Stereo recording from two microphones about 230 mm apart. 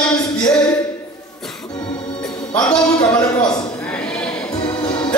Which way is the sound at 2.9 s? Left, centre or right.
Centre.